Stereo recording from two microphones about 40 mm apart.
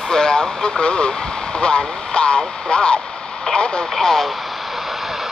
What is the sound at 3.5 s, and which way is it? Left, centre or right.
Radio, left.